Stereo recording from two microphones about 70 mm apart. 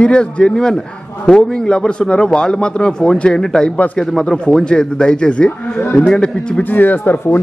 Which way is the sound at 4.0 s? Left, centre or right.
Centre.